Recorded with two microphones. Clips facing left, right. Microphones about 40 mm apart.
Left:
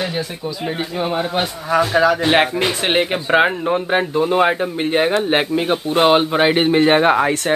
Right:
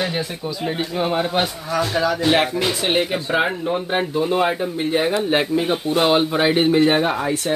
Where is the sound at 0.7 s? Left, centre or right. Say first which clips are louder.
Even; centre.